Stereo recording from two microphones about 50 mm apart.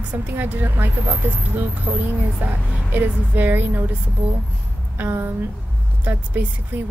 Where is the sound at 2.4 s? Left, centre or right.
Right.